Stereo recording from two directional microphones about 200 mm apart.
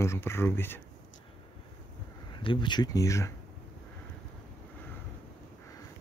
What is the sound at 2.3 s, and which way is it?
Speech, 25° left (ahead or behind).